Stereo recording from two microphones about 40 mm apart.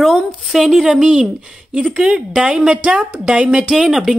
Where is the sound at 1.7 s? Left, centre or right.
Right.